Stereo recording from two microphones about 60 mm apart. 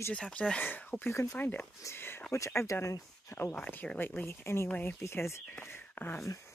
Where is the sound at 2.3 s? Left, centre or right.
Left.